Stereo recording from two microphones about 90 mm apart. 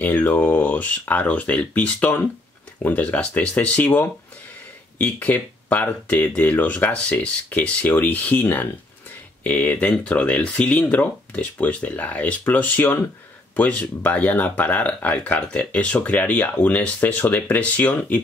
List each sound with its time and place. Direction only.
0.0 s speech: 20° left (ahead or behind)